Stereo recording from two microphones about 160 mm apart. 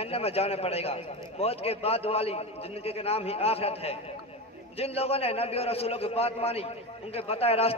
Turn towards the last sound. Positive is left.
turn(degrees=40)  # may be behind; listen again after turning